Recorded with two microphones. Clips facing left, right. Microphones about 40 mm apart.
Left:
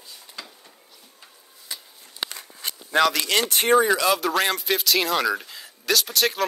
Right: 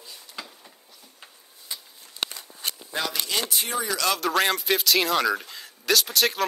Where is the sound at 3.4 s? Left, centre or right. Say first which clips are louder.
Left 14 dB; left.